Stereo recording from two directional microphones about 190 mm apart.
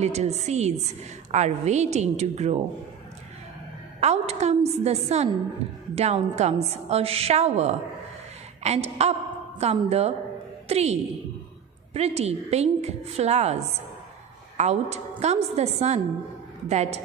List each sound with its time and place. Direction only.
0.0 s a woman's voice: 35° right (ahead or behind)
4.0 s a woman's voice: 35° right (ahead or behind)